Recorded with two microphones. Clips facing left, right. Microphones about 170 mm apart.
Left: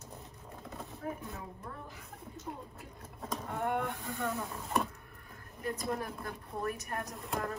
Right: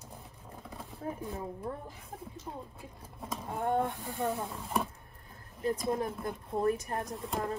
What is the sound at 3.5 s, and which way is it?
Speech, 30° right (ahead or behind).